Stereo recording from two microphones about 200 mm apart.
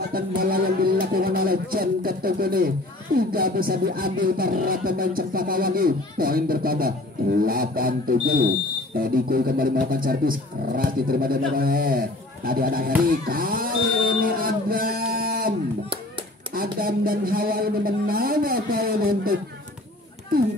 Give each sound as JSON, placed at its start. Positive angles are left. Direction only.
{"t": 0.4, "sound": "speech", "side_deg": -45}
{"t": 13.0, "sound": "buzzer", "side_deg": -45}
{"t": 16.7, "sound": "speech", "side_deg": -45}